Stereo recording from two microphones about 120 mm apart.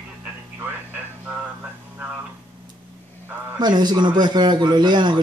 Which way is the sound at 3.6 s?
35° right (ahead or behind).